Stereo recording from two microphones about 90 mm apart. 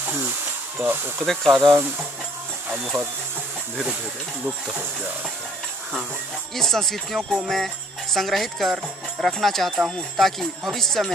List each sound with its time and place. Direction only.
0.0 s snake: 15° right (ahead or behind)
0.7 s speech: 25° right (ahead or behind)
1.2 s jingle bell: 5° left (ahead or behind)
1.6 s speech: 25° right (ahead or behind)
2.7 s speech: 10° right (ahead or behind)
4.5 s speech: 15° right (ahead or behind)
6.5 s jingle bell: 5° left (ahead or behind)